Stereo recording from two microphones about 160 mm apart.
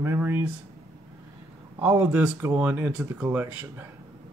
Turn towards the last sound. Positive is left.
turn(degrees=-15)  # may be behind; listen again after turning